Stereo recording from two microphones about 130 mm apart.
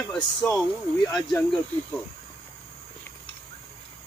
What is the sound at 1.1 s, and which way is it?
Speech, centre (ahead or behind).